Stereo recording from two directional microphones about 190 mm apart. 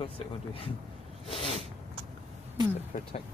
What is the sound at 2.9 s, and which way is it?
Speech, 40° left (ahead or behind).